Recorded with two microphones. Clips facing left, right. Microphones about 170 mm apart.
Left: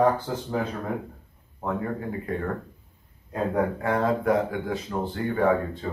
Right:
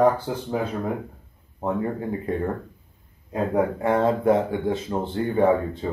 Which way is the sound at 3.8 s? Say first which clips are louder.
Right 4 dB; 25° right (ahead or behind).